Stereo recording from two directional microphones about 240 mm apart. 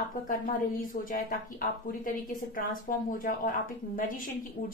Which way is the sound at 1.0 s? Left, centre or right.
Left.